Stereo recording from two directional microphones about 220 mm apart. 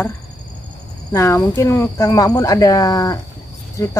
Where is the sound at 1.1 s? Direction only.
15° left (ahead or behind).